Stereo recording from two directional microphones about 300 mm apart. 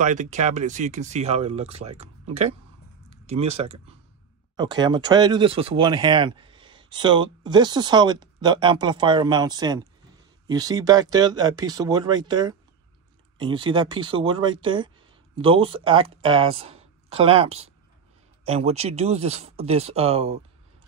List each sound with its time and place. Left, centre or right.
0.0 s speech: right